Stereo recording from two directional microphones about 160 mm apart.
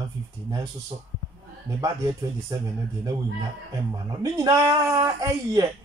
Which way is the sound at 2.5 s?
25° right (ahead or behind).